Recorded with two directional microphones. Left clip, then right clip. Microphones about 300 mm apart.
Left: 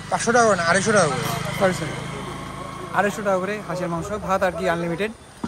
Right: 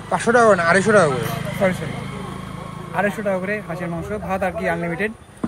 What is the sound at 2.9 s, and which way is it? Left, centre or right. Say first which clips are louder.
Speech: even; centre.